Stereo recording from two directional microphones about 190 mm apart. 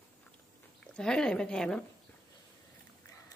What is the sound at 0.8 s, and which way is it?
Speech, 5° left (ahead or behind).